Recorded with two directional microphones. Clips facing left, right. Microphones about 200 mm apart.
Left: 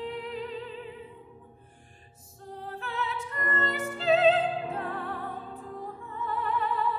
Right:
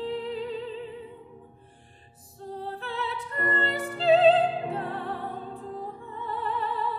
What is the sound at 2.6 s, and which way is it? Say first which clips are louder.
Music: right 1 dB; 35° right (ahead or behind).